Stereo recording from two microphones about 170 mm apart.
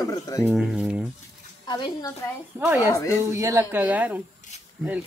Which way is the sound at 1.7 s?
25° left (ahead or behind).